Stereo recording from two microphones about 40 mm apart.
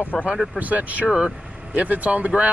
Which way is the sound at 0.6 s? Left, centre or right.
Right.